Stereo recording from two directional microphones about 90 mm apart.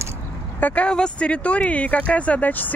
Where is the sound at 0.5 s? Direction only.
15° left (ahead or behind).